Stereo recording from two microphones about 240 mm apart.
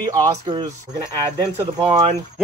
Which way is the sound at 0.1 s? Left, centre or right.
Centre.